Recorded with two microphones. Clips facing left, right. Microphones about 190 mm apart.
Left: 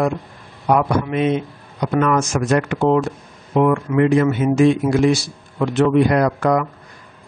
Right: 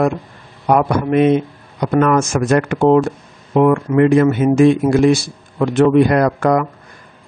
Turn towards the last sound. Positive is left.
turn(degrees=-50)  # may be behind; listen again after turning